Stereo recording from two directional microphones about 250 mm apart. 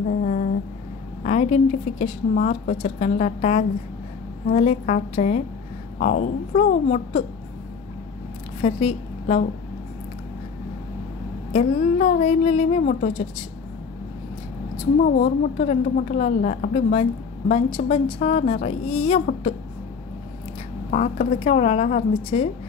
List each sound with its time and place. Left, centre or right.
0.2 s a sound: left
1.2 s a woman's voice: left
8.6 s a woman's voice: left
11.5 s a woman's voice: left
15.0 s a woman's voice: left
20.9 s a woman's voice: left